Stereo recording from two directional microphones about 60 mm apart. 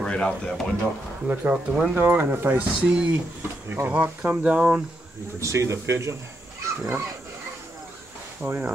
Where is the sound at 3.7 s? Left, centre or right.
Right.